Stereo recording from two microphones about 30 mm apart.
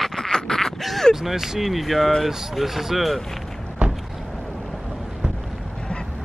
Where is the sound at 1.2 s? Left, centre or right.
Centre.